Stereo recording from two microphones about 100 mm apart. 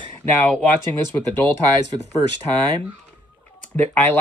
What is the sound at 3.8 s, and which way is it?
Speech, 15° left (ahead or behind).